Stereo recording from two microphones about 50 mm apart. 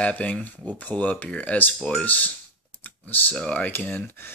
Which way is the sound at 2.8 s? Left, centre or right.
Left.